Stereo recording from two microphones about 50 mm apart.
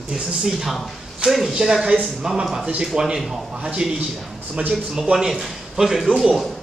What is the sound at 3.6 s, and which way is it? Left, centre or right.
Speech, right.